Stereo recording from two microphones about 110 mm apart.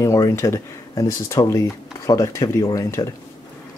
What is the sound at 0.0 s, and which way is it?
Speech, 30° left (ahead or behind).